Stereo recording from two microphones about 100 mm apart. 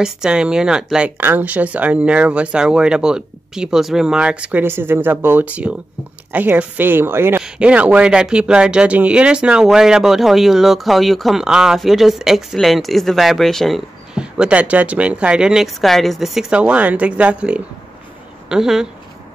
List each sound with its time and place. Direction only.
0.0 s speech: 10° right (ahead or behind)
1.1 s a woman's voice: 20° right (ahead or behind)
7.4 s speech: 10° right (ahead or behind)